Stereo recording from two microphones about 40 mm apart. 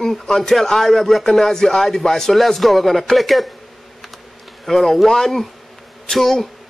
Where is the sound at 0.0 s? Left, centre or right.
Centre.